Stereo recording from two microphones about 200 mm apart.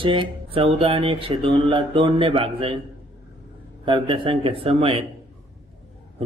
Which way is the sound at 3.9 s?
25° right (ahead or behind).